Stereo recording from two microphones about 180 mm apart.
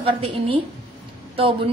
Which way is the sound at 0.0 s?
30° right (ahead or behind).